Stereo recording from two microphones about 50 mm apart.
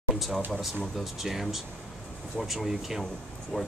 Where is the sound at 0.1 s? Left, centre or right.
Centre.